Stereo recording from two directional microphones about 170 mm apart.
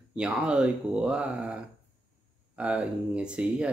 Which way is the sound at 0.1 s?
5° right (ahead or behind).